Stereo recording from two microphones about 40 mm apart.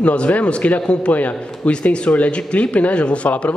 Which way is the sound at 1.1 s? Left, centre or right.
Left.